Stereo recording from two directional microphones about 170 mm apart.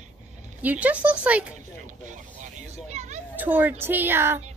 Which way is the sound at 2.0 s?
45° right (ahead or behind).